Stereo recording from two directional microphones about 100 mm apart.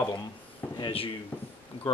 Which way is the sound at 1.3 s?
15° left (ahead or behind).